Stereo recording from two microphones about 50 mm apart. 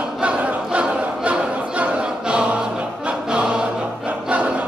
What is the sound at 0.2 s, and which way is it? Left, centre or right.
Choir, right.